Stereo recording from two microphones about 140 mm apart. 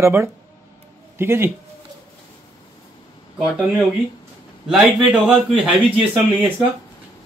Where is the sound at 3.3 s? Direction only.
Centre (ahead or behind).